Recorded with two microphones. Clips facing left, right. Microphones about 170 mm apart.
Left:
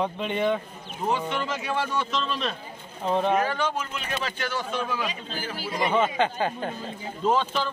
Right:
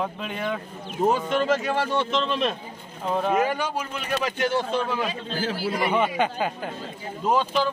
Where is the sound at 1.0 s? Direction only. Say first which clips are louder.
Right 6 dB; 45° right (ahead or behind); by 2.3 s 25° right (ahead or behind).